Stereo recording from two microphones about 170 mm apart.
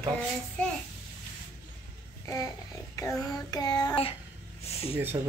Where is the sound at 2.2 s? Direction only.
20° left (ahead or behind).